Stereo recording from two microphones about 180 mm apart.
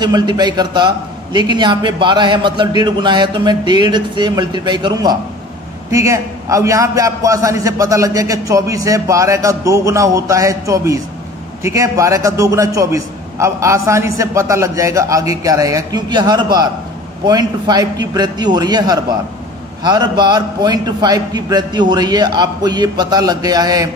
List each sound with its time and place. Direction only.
0.0 s a man's voice: 25° right (ahead or behind)